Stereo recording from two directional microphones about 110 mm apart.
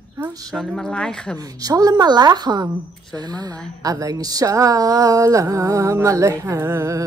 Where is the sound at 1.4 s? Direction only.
35° right (ahead or behind).